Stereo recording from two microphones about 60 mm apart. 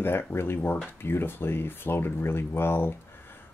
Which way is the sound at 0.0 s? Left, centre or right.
Left.